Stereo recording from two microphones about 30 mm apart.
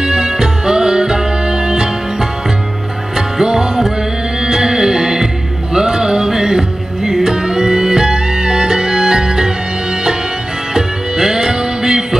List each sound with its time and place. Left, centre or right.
0.0 s music: right
3.4 s music: right
10.7 s music: centre